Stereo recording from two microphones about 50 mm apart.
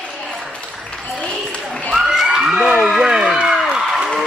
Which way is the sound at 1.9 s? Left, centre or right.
Centre.